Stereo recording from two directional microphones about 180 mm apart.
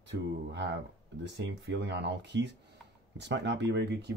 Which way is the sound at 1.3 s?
75° right (ahead or behind).